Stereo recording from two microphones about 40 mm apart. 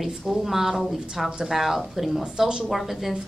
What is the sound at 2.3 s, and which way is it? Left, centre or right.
Speech, centre.